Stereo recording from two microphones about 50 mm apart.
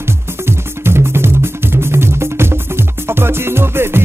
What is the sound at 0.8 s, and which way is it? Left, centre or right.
Music, right.